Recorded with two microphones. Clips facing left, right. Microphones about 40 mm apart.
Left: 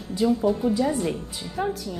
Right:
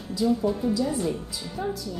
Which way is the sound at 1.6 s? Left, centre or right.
Left.